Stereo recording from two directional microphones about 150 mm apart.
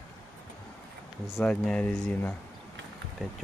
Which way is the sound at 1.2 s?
Centre (ahead or behind).